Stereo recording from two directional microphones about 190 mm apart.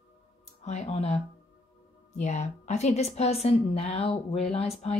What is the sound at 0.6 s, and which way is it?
Speech, 35° left (ahead or behind).